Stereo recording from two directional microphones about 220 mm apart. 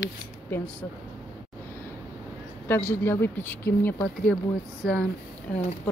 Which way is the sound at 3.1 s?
10° left (ahead or behind).